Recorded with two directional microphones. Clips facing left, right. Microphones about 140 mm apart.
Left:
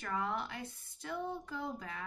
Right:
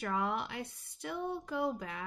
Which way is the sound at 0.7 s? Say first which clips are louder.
Right 2 dB; 70° right (ahead or behind).